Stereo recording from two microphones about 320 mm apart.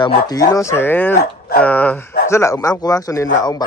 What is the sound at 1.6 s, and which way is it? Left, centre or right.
Speech, centre.